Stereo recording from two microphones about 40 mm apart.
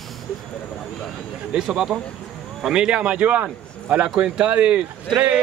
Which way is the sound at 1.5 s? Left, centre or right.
Centre.